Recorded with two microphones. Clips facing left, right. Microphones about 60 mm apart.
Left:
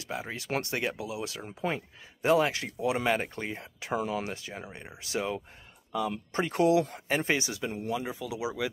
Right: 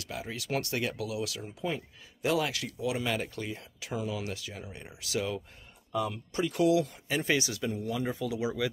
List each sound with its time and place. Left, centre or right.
0.0 s speech: left
6.0 s speech: left
8.3 s speech: centre